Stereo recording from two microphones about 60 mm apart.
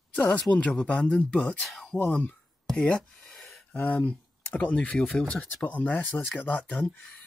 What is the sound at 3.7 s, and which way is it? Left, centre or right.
Speech, left.